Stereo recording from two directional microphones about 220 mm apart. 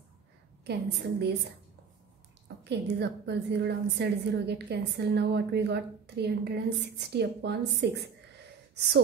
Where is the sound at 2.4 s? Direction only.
50° right (ahead or behind).